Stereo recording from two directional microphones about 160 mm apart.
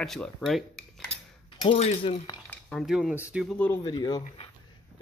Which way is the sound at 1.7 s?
40° left (ahead or behind).